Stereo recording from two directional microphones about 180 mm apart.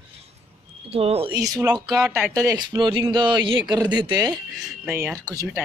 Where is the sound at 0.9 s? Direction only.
35° right (ahead or behind).